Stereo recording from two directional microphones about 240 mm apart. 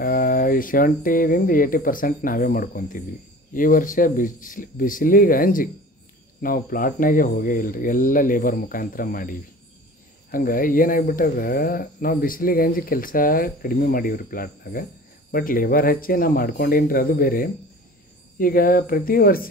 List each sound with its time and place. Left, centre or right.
0.0 s speech: left